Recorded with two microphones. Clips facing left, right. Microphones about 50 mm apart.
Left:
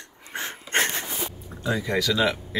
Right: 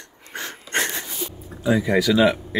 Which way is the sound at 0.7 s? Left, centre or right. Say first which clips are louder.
Even; left.